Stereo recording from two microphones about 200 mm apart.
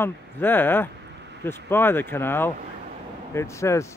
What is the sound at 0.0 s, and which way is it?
Speech, 10° left (ahead or behind).